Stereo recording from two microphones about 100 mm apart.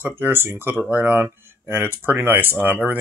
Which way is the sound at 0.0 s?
20° right (ahead or behind).